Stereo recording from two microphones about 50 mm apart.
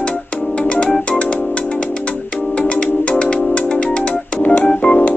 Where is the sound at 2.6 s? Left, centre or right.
Centre.